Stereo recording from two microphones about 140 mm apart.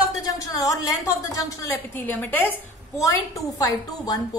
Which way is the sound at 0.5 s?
25° left (ahead or behind).